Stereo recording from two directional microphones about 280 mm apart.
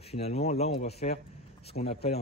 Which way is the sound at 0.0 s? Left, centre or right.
Left.